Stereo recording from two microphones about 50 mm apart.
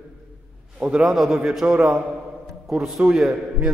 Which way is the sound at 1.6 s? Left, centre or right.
Right.